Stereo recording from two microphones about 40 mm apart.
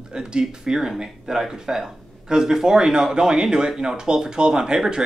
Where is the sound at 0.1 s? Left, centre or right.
Right.